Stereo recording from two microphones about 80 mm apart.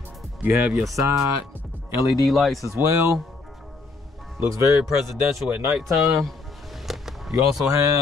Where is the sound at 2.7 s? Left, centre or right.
Right.